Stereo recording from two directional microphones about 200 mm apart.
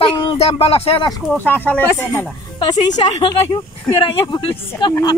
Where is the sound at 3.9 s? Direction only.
25° left (ahead or behind).